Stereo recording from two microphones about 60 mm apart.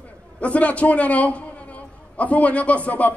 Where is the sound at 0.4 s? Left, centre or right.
Left.